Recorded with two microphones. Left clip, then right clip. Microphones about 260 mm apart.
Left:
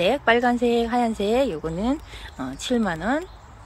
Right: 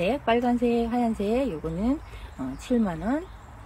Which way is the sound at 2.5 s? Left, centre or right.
Centre.